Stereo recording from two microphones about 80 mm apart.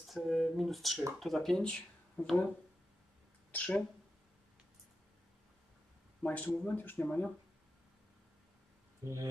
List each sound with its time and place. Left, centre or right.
0.0 s speech: centre
3.5 s speech: centre
6.2 s speech: centre
9.0 s speech: right